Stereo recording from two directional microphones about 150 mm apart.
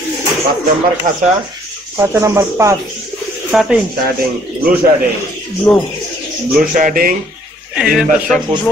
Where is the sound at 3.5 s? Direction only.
Centre (ahead or behind).